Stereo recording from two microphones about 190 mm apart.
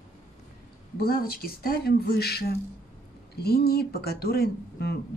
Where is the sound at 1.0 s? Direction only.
55° left (ahead or behind).